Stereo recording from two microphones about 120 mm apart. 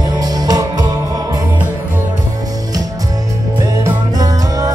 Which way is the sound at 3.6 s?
30° right (ahead or behind).